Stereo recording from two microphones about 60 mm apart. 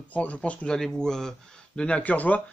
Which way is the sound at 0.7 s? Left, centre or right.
Centre.